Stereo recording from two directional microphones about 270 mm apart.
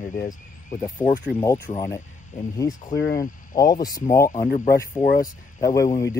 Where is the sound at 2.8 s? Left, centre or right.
Left.